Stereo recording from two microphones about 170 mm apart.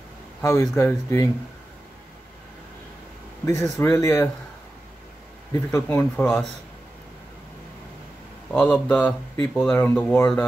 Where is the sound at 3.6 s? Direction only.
15° left (ahead or behind).